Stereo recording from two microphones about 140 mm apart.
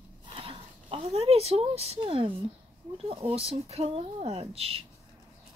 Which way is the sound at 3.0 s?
40° right (ahead or behind).